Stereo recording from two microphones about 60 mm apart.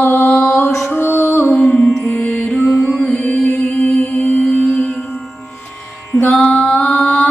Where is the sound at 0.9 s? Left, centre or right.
Left.